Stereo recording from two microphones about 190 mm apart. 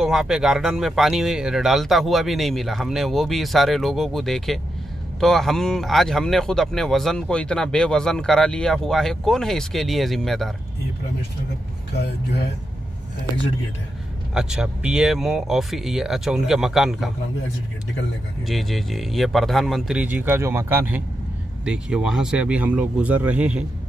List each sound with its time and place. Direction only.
0.0 s speech: 5° right (ahead or behind)
11.9 s speech: 60° left (ahead or behind)
14.3 s speech: 5° right (ahead or behind)
18.5 s speech: centre (ahead or behind)